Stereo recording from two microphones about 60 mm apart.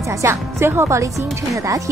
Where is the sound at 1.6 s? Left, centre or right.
Right.